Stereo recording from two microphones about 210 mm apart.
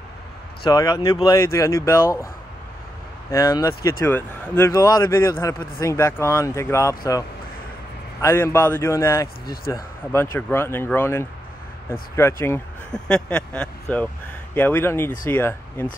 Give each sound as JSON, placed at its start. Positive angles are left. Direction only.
{"t": 0.7, "sound": "a man's voice", "side_deg": 15}
{"t": 3.3, "sound": "a man's voice", "side_deg": 15}
{"t": 8.2, "sound": "a man's voice", "side_deg": 10}